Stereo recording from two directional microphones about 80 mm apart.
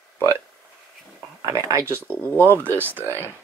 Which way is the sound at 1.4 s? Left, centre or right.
Right.